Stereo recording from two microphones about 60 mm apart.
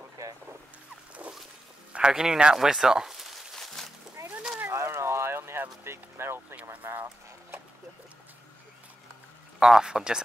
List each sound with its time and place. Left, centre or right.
0.2 s vehicle: right
1.9 s speech: centre
3.5 s a sound: centre
4.2 s a sound: right
6.7 s speech: right
9.6 s speech: centre